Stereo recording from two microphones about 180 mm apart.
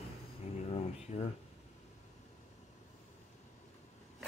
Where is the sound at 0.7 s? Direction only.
35° left (ahead or behind).